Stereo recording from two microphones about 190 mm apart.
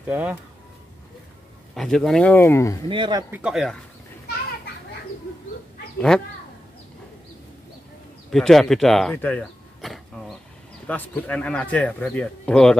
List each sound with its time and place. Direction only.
0.0 s speech: 10° right (ahead or behind)
1.8 s speech: centre (ahead or behind)
2.9 s speech: 25° right (ahead or behind)
3.3 s speech: 5° right (ahead or behind)
5.9 s speech: 5° left (ahead or behind)
8.3 s speech: centre (ahead or behind)